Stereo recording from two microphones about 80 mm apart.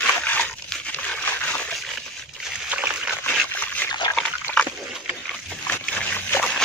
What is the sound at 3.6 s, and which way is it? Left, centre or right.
Dog, centre.